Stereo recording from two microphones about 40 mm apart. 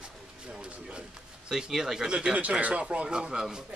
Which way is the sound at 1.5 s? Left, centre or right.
Centre.